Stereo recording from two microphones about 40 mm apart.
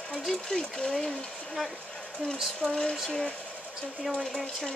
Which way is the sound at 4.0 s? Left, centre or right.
Centre.